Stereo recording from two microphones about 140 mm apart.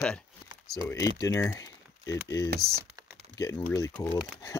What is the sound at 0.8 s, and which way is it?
Speech, 20° left (ahead or behind).